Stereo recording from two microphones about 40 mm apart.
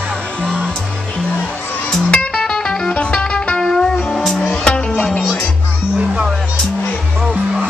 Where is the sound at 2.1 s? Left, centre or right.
Left.